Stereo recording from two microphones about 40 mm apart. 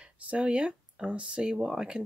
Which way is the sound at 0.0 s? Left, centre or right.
Right.